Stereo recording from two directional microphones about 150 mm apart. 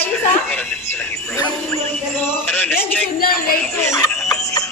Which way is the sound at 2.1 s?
15° left (ahead or behind).